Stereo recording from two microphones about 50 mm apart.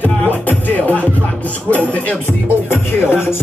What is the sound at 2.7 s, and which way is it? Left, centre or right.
Speech, left.